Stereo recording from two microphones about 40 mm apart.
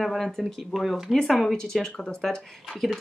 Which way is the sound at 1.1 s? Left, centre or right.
Centre.